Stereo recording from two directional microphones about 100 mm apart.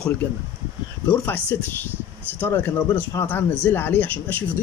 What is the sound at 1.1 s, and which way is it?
Speech, 15° left (ahead or behind).